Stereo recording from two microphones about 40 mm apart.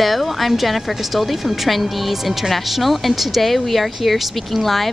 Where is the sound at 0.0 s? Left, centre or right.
Centre.